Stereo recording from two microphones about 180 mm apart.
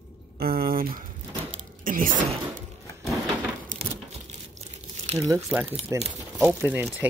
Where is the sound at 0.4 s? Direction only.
55° right (ahead or behind).